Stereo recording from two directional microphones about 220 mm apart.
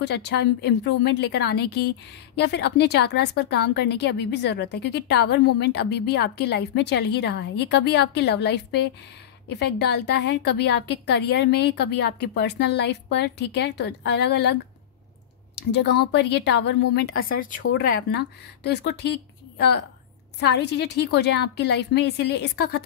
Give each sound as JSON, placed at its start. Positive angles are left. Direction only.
{"t": 0.0, "sound": "a woman's voice", "side_deg": 50}
{"t": 15.7, "sound": "a woman's voice", "side_deg": 50}